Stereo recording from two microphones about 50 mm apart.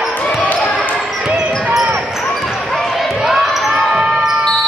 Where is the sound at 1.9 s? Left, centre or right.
Centre.